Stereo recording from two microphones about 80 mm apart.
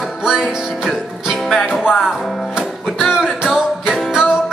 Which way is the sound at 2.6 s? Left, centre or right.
Centre.